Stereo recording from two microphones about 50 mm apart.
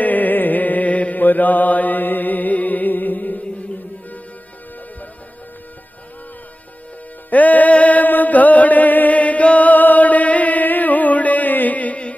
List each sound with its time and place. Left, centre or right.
0.0 s chant: left
7.2 s music: left